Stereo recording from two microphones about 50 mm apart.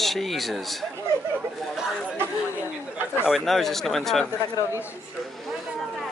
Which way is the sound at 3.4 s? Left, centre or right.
Centre.